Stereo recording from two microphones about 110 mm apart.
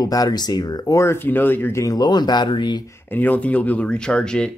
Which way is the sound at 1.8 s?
35° left (ahead or behind).